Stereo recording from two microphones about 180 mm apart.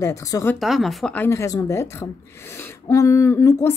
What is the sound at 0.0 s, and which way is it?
Speech, 20° left (ahead or behind).